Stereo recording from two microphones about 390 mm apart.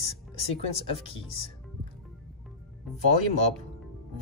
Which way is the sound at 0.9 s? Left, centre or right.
Centre.